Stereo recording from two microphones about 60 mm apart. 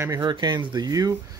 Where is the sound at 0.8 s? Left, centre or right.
Right.